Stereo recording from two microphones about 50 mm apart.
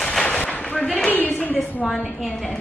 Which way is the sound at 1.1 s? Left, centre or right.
Left.